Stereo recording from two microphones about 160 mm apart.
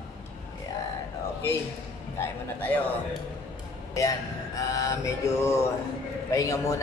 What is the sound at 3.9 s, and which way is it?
Mantra, 20° left (ahead or behind).